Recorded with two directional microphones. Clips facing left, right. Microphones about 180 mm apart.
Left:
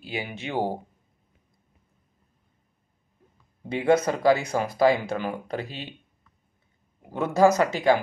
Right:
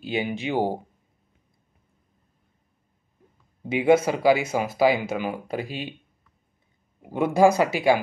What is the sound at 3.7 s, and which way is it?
Speech, 5° right (ahead or behind).